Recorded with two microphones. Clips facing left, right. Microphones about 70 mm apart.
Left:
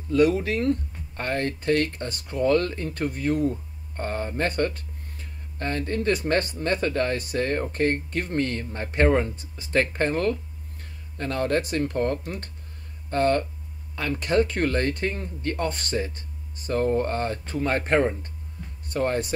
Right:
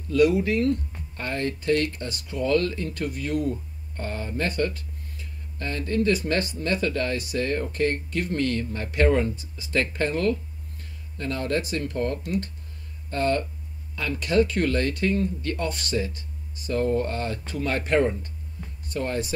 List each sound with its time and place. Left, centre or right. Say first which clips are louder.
0.1 s speech: right 1 dB; left
9.3 s speech: left 2 dB; left